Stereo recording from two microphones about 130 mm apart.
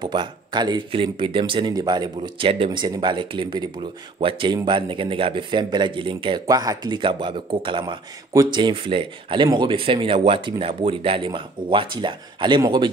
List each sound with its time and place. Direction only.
0.0 s speech: 35° right (ahead or behind)
6.4 s speech: 30° right (ahead or behind)